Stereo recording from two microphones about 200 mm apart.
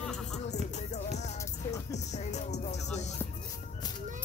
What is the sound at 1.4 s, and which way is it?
Music, 15° left (ahead or behind).